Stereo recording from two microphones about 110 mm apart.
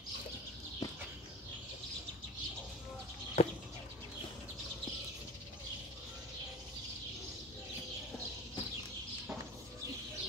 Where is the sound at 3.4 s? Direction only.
80° left.